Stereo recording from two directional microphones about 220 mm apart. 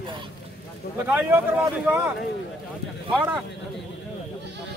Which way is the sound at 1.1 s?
10° right (ahead or behind).